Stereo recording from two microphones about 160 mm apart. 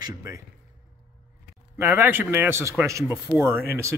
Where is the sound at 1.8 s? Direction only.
10° right (ahead or behind).